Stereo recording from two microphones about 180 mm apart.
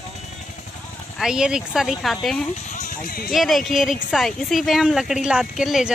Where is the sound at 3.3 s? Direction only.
Centre (ahead or behind).